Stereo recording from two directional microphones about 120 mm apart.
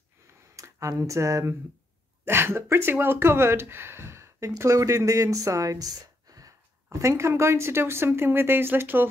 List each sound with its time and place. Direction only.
0.6 s speech: 25° right (ahead or behind)